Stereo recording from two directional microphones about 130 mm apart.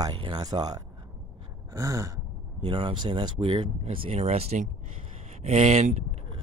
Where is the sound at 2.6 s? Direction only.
40° right (ahead or behind).